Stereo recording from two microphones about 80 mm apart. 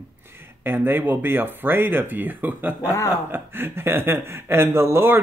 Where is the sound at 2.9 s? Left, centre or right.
Left.